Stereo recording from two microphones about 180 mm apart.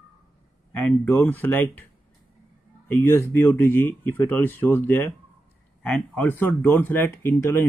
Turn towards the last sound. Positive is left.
turn(degrees=15)  # may be behind; listen again after turning